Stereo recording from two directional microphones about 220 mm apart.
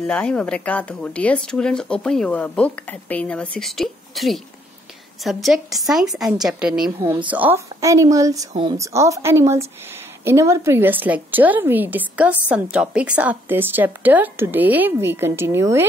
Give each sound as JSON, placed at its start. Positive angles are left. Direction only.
{"t": 0.0, "sound": "a woman's voice", "side_deg": 5}